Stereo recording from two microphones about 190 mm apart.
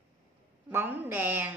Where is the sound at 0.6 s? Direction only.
10° right (ahead or behind).